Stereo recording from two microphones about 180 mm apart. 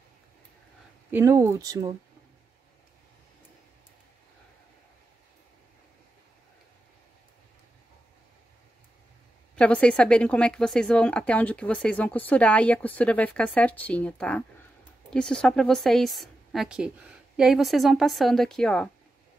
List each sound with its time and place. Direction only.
1.1 s speech: 15° right (ahead or behind)
9.6 s a woman's voice: 5° left (ahead or behind)